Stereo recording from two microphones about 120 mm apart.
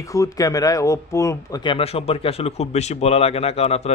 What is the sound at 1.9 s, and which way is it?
Speech, 55° left (ahead or behind).